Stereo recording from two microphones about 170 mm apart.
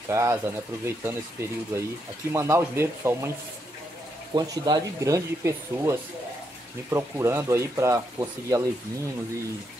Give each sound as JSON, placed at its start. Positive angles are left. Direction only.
{"t": 0.1, "sound": "speech", "side_deg": -15}
{"t": 4.4, "sound": "speech", "side_deg": -25}